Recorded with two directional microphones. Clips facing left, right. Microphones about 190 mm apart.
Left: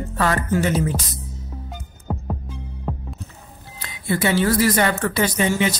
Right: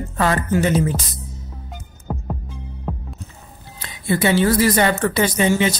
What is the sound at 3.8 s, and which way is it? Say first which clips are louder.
Speech: right 2 dB; 20° right (ahead or behind).